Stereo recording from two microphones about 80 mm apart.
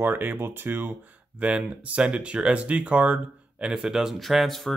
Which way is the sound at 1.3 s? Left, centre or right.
Centre.